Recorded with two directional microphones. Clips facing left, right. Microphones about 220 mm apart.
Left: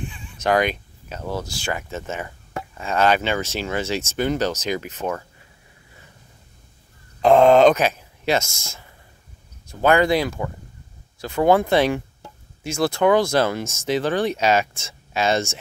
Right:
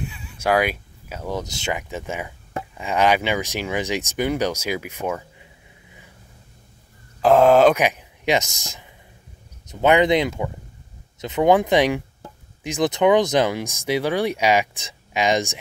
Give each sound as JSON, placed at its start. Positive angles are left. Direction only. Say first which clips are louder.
{"t": 0.0, "sound": "speech", "louder": "even", "side_deg": -5}
{"t": 7.2, "sound": "speech", "louder": "left 1 dB", "side_deg": -5}